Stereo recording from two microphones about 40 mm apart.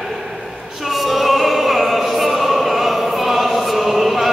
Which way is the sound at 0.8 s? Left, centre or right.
Centre.